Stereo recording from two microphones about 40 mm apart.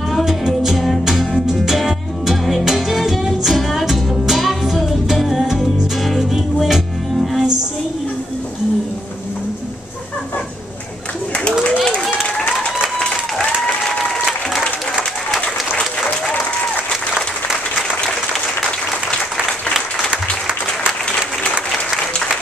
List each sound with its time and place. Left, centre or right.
0.1 s music: centre
13.7 s applause: centre